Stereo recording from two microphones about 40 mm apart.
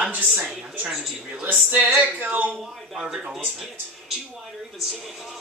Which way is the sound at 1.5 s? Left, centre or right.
Right.